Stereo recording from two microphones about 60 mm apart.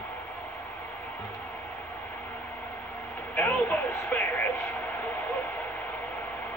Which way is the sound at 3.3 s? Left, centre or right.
Left.